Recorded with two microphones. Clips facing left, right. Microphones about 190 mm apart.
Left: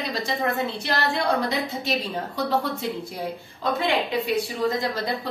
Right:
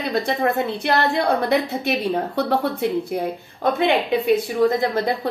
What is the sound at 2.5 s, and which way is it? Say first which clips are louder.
Speech: right 4 dB; 60° right (ahead or behind).